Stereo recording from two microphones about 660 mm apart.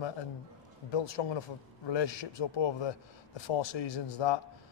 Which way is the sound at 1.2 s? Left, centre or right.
Left.